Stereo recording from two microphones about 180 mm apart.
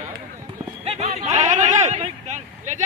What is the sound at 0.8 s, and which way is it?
Run, 40° right (ahead or behind).